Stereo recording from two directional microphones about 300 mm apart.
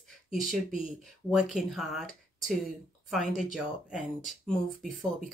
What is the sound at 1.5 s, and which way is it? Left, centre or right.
Speech, centre.